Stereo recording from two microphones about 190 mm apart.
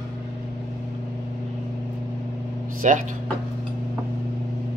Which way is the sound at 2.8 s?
40° right (ahead or behind).